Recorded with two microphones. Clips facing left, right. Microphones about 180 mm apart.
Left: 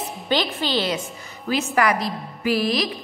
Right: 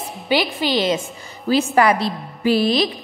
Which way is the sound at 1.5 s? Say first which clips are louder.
Right 5 dB; 30° right (ahead or behind).